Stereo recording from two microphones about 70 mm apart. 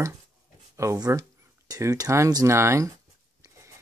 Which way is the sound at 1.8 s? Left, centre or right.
Right.